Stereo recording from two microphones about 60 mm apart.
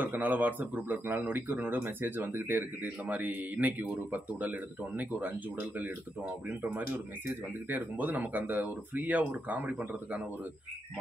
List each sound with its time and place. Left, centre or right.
0.0 s speech: right